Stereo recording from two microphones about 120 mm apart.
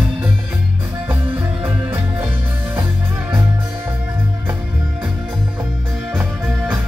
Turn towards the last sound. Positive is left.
turn(degrees=-10)  # may be behind; listen again after turning